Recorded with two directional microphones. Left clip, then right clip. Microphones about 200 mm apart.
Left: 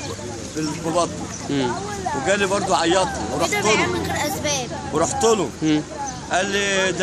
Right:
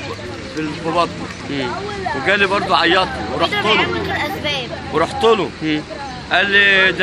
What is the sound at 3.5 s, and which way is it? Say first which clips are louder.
Chatter: right 2 dB; 55° left (ahead or behind).